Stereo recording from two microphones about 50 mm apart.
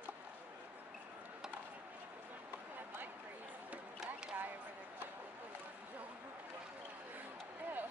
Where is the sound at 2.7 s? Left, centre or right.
Right.